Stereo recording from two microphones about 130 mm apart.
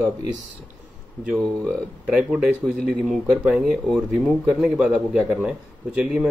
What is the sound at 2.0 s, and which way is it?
Speech, 10° right (ahead or behind).